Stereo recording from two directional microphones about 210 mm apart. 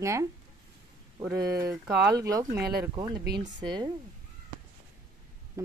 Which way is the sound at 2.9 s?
20° right (ahead or behind).